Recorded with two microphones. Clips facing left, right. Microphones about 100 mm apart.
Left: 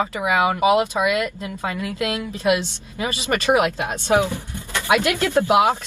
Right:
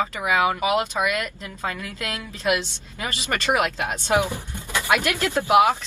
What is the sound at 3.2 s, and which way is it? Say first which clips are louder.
Speech: left 4 dB; 15° left (ahead or behind).